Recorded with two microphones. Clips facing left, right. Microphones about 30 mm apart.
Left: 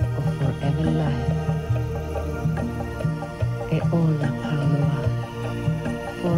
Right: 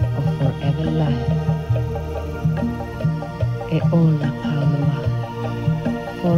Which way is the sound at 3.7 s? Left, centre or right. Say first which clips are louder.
Right 5 dB; centre.